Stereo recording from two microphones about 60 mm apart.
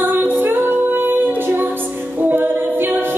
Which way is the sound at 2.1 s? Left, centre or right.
Right.